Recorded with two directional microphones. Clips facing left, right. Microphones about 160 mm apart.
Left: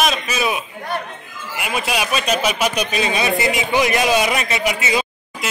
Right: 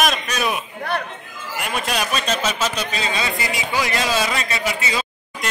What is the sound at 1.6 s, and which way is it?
A man's voice, 5° left (ahead or behind).